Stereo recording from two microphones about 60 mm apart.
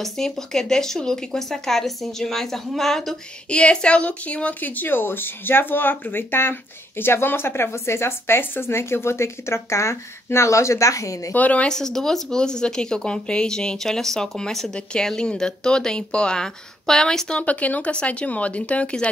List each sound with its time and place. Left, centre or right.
0.0 s speech: centre
3.4 s speech: centre; by 11.3 s left
11.3 s speech: left
11.7 s speech: centre
17.4 s speech: left